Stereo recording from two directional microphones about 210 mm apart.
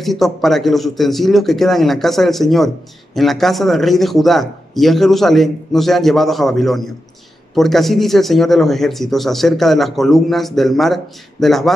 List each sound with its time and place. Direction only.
0.0 s speech: centre (ahead or behind)